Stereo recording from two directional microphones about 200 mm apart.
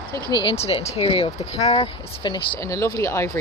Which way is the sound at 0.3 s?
25° left (ahead or behind).